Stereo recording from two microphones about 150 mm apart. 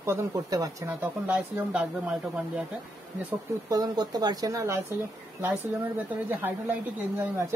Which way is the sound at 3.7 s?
25° right (ahead or behind).